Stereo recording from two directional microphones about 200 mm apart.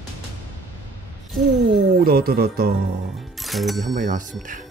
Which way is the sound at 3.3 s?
Centre (ahead or behind).